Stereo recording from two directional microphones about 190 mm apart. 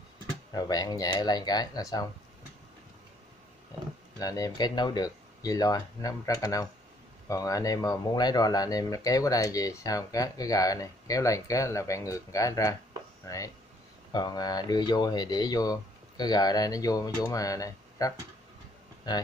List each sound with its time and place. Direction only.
0.6 s speech: 20° left (ahead or behind)
4.2 s speech: 20° left (ahead or behind)